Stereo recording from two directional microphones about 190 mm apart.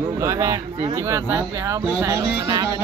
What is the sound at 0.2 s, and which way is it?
Speech, 15° right (ahead or behind).